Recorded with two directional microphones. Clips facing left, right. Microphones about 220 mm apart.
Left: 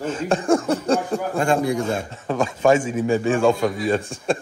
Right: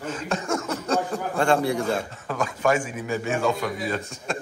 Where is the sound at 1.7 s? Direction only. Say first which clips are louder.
Left 2 dB; 25° left (ahead or behind).